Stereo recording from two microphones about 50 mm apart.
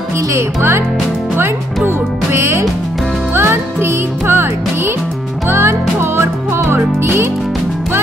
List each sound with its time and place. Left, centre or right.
0.3 s speech: right
1.9 s music: right